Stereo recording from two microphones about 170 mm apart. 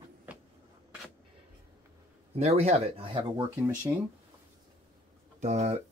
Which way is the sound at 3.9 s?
15° right (ahead or behind).